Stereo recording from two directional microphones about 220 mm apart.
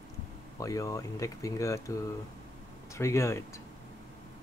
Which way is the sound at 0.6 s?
15° left (ahead or behind).